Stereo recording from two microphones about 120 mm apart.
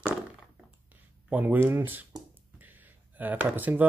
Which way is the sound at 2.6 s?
15° right (ahead or behind).